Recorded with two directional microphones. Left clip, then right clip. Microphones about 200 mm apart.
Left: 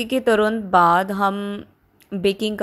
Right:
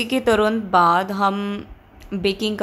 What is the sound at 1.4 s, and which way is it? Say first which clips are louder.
Speech: right 1 dB; 15° left (ahead or behind).